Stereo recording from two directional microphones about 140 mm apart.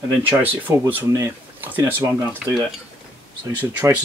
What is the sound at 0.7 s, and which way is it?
Speech, 15° right (ahead or behind).